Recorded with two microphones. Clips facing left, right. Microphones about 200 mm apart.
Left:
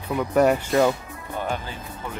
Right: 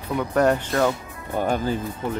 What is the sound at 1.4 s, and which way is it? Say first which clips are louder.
Speech: right 7 dB; 45° right (ahead or behind).